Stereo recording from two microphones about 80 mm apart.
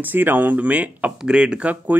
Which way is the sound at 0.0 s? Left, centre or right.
Right.